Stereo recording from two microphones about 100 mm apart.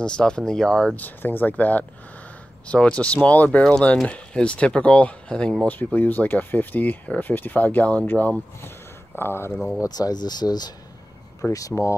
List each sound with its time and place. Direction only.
0.0 s speech: 10° left (ahead or behind)
0.9 s speech: 20° left (ahead or behind)
9.8 s speech: 40° left (ahead or behind)
11.5 s speech: 35° left (ahead or behind)